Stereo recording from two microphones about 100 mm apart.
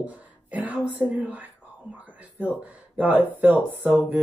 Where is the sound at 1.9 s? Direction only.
15° right (ahead or behind).